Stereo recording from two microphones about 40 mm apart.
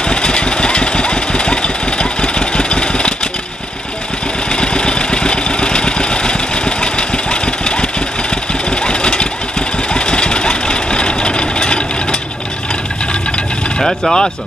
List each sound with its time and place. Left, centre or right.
0.1 s engine: left
4.5 s vehicle: left
9.9 s engine: left
13.7 s speech: centre